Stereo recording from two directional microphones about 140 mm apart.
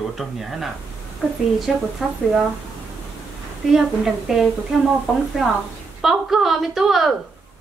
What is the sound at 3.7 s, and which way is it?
Speech, centre (ahead or behind).